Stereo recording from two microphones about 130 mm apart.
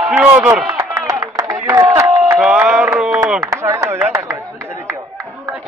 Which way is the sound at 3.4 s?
20° right (ahead or behind).